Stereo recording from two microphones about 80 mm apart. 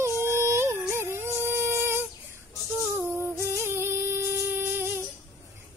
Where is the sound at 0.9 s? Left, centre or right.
Right.